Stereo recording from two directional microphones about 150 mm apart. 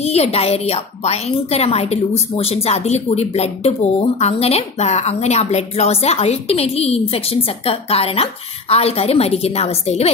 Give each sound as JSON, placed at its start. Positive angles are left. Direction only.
{"t": 0.0, "sound": "a woman's voice", "side_deg": 45}